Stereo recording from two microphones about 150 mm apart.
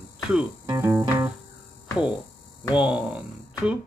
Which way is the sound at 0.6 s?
25° right (ahead or behind).